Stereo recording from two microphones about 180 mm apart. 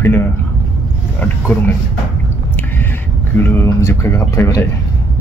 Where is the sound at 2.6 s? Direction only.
10° left (ahead or behind).